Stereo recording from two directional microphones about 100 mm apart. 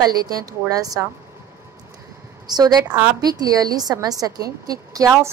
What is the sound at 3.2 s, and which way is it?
A woman's voice, 40° right (ahead or behind).